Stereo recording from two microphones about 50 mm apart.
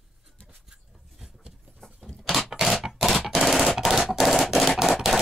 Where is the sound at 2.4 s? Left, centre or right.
Centre.